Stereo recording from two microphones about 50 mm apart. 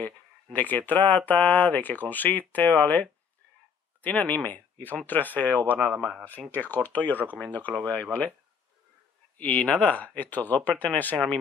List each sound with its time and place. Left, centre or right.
0.0 s speech: left
5.8 s speech: centre
6.5 s speech: left
9.4 s speech: left